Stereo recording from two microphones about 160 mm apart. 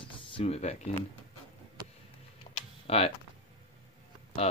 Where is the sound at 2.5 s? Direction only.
40° left (ahead or behind).